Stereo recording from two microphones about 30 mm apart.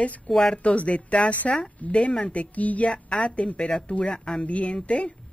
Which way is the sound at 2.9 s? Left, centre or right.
Left.